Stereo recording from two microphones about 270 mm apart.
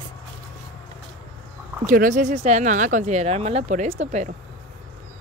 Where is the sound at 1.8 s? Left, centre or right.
Right.